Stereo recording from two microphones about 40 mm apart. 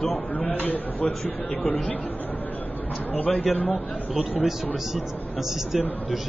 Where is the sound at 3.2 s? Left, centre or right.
Left.